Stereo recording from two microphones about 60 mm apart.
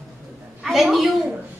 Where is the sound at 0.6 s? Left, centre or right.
Centre.